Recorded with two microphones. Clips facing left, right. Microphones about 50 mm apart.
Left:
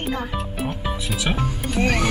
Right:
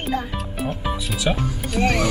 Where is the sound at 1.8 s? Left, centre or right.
Left.